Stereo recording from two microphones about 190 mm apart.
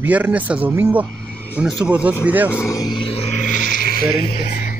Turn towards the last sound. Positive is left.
turn(degrees=50)  # may be behind; listen again after turning